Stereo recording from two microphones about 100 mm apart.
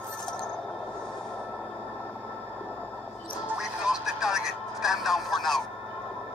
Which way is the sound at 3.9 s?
5° right (ahead or behind).